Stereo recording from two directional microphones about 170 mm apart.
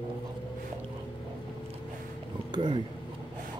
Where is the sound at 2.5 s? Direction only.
25° right (ahead or behind).